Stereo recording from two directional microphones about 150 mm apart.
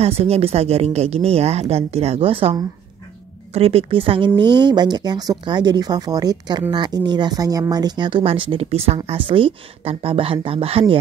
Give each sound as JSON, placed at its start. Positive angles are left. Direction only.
{"t": 0.0, "sound": "speech", "side_deg": -45}
{"t": 3.5, "sound": "speech", "side_deg": -40}